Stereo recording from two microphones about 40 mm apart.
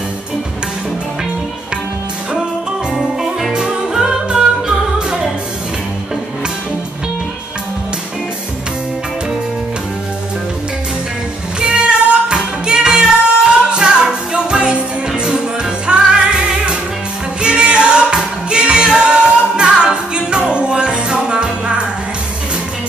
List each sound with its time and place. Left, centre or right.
3.5 s music: centre
11.6 s music: right